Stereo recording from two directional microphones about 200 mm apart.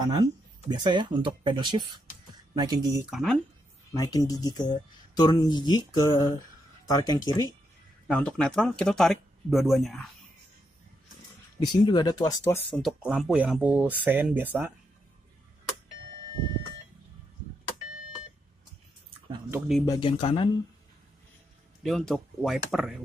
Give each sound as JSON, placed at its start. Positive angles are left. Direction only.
{"t": 0.1, "sound": "speech", "side_deg": -20}
{"t": 3.1, "sound": "speech", "side_deg": 0}
{"t": 3.9, "sound": "speech", "side_deg": 20}
{"t": 8.1, "sound": "speech", "side_deg": 5}
{"t": 11.6, "sound": "speech", "side_deg": 20}
{"t": 12.7, "sound": "speech", "side_deg": 0}
{"t": 19.9, "sound": "speech", "side_deg": 25}
{"t": 21.8, "sound": "speech", "side_deg": 0}